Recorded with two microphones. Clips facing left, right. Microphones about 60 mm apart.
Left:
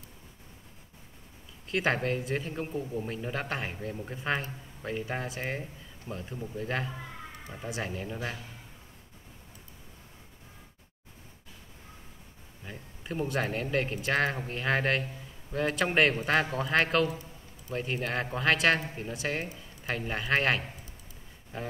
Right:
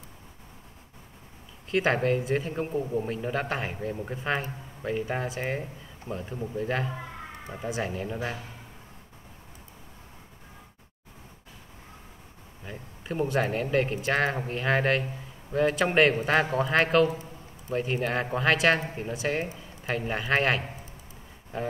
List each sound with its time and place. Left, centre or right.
1.7 s speech: centre
3.9 s speech: centre
4.2 s speech: centre
6.3 s speech: centre
6.6 s speech: centre
12.6 s speech: centre